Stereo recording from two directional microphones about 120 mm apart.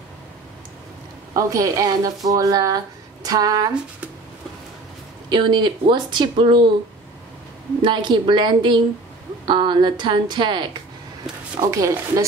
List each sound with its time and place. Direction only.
1.3 s speech: 30° right (ahead or behind)
5.3 s speech: 40° right (ahead or behind)
7.8 s speech: 40° right (ahead or behind)
11.7 s speech: 25° right (ahead or behind)